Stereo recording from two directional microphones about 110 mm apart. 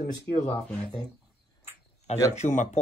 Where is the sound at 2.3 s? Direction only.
90° left.